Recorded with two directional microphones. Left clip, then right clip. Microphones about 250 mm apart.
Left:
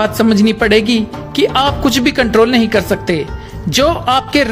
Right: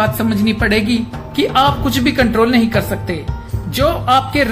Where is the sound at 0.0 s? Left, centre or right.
Left.